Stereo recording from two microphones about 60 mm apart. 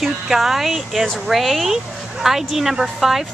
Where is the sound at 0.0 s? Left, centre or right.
Centre.